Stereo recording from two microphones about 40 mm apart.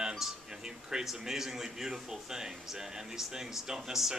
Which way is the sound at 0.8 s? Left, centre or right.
Centre.